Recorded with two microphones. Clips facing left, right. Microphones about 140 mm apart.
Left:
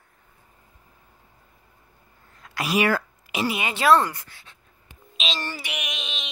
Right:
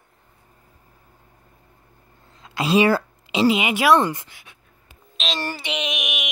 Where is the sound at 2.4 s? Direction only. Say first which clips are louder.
Right 5 dB; 25° right (ahead or behind).